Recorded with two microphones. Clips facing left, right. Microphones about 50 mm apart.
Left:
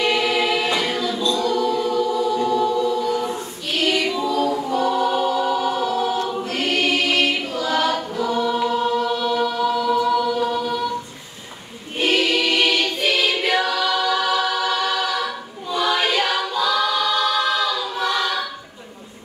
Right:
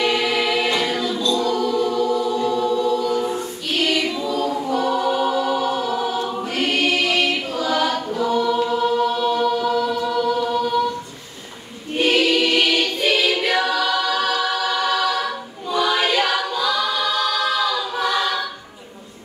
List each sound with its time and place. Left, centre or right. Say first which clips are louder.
0.0 s choir: even; centre
2.2 s music: even; centre
2.7 s music: right 1 dB; centre
3.0 s choir: right 1 dB; centre
4.3 s choir: left 1 dB; centre
5.5 s a capella: even; centre
6.2 s choir: right 1 dB; centre
8.5 s choir: even; centre
8.8 s choir: right 2 dB; centre
9.3 s a capella: right 1 dB; centre
12.0 s choir: right 2 dB; centre
14.5 s a capella: right 1 dB; centre
17.6 s choir: right 1 dB; centre